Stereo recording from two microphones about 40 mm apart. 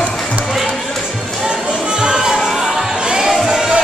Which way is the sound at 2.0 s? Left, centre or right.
Centre.